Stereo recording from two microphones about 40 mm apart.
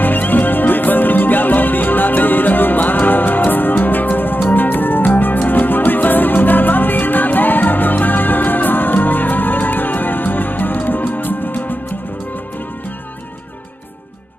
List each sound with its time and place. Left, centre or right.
0.0 s music: left